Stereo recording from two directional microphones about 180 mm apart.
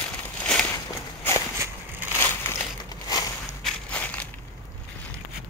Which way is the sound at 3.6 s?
5° left (ahead or behind).